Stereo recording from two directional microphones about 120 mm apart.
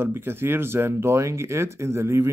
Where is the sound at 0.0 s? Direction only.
20° right (ahead or behind).